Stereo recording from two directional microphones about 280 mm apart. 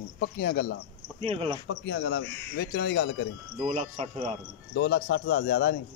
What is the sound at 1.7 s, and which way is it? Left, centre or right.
A man's voice, left.